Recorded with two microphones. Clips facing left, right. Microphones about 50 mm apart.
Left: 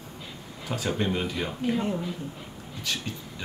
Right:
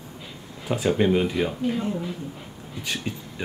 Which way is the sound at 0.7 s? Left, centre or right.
Centre.